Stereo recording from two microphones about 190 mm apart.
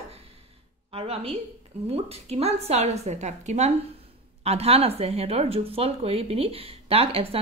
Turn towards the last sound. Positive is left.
turn(degrees=-30)  # may be behind; listen again after turning